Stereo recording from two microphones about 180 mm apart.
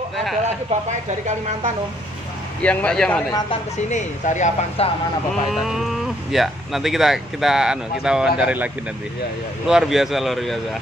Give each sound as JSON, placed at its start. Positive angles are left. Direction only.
{"t": 2.6, "sound": "speech", "side_deg": 5}
{"t": 3.9, "sound": "speech", "side_deg": 40}
{"t": 5.3, "sound": "speech", "side_deg": 0}
{"t": 9.7, "sound": "speech", "side_deg": 0}